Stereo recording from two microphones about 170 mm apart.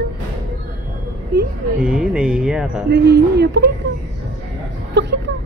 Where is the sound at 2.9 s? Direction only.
85° right.